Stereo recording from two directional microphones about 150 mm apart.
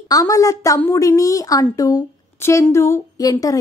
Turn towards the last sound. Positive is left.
turn(degrees=25)  # may be behind; listen again after turning